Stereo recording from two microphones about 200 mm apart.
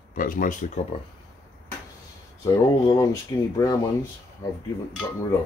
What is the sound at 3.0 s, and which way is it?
Speech, 15° left (ahead or behind).